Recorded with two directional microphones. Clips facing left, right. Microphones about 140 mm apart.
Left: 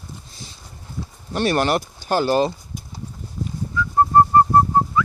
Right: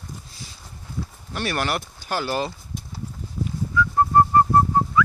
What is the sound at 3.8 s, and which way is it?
Whistling, 35° left (ahead or behind).